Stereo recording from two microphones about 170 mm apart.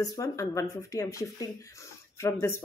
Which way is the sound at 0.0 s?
20° left (ahead or behind).